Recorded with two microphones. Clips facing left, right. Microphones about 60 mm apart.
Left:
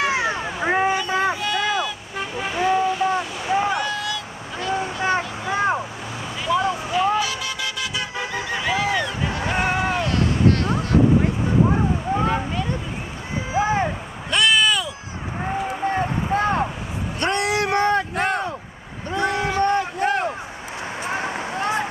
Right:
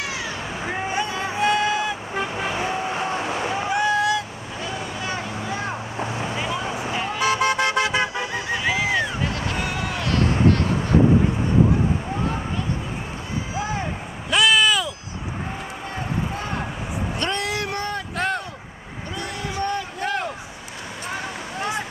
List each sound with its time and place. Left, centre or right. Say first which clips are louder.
0.0 s vehicle: left 7 dB; left
1.0 s music: left 6 dB; left
1.3 s vehicle: right 2 dB; right
3.7 s boat: right 5 dB; right
4.7 s vehicle: left 8 dB; left
5.9 s vehicle: right 4 dB; right
7.2 s vehicle: right 5 dB; right
8.5 s a sound: left 1 dB; centre
9.6 s run: left 5 dB; left
13.5 s vehicle: left 9 dB; left
14.3 s a sound: right 1 dB; centre
15.9 s a sound: left 4 dB; left
21.1 s vehicle: left 4 dB; left